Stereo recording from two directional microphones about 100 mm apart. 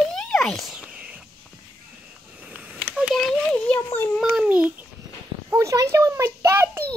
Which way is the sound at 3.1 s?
5° left (ahead or behind).